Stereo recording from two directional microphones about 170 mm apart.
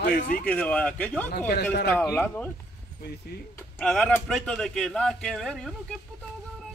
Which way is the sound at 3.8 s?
5° left (ahead or behind).